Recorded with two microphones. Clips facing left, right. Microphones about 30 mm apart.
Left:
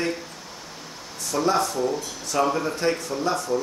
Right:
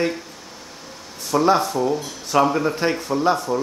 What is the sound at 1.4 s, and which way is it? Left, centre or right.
A man's voice, right.